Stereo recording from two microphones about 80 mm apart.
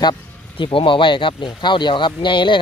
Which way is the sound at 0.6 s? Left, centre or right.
Left.